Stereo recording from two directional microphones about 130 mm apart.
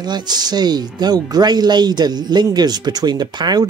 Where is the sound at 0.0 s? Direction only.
35° right (ahead or behind).